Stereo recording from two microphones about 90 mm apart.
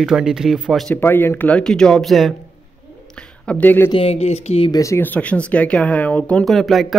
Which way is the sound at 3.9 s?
90° left.